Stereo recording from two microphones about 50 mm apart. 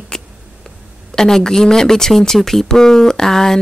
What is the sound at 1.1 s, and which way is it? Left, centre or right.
Speech, centre.